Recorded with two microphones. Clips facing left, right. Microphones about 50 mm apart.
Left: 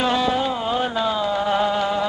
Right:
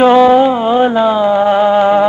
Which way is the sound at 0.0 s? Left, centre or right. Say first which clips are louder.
Right 14 dB; right.